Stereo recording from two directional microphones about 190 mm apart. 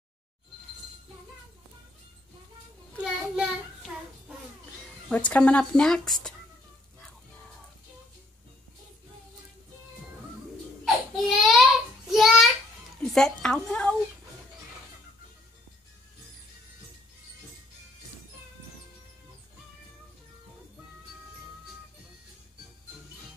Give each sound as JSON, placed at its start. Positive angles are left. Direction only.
{"t": 3.0, "sound": "child singing", "side_deg": -5}
{"t": 5.1, "sound": "speech", "side_deg": 5}
{"t": 10.9, "sound": "baby cry", "side_deg": 0}
{"t": 12.1, "sound": "a sound", "side_deg": 0}